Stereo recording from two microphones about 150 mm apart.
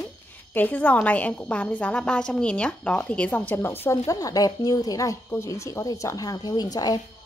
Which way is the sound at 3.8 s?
20° left (ahead or behind).